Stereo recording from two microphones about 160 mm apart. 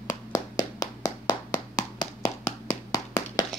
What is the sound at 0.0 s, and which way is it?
Clapping, 20° left (ahead or behind).